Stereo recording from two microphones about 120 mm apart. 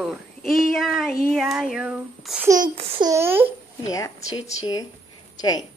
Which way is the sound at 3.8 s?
30° left (ahead or behind).